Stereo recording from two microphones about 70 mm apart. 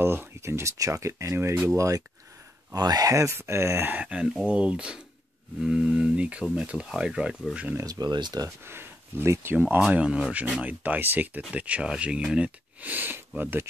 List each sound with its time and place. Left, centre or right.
0.0 s speech: right
1.8 s speech: right
2.7 s speech: right
3.9 s speech: right
4.2 s speech: centre
7.8 s speech: right
8.5 s speech: right
9.8 s speech: centre; by 13.7 s right